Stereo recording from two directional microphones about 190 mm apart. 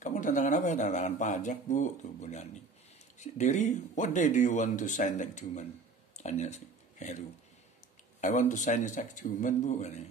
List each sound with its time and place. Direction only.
0.0 s speech: 40° left (ahead or behind)
6.1 s a sound: 35° left (ahead or behind)
8.2 s speech: 40° left (ahead or behind)